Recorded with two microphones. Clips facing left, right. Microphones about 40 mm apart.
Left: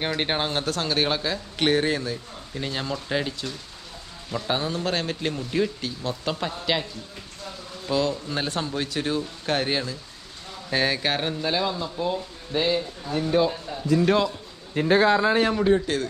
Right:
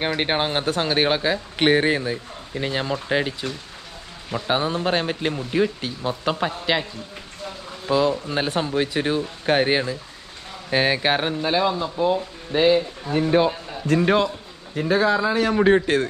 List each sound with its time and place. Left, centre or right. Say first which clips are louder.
0.0 s speech: right 3 dB; centre
7.9 s a man's voice: right 5 dB; centre
14.0 s a man's voice: right 2 dB; centre
14.9 s a man's voice: even; left
15.6 s a man's voice: right 4 dB; right